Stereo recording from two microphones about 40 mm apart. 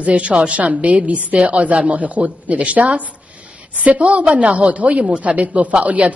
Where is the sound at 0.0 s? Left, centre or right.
Right.